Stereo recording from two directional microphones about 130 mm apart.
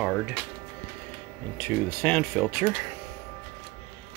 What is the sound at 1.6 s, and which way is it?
Speech, 15° left (ahead or behind).